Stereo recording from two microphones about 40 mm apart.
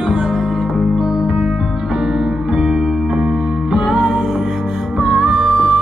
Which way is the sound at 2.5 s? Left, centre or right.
Right.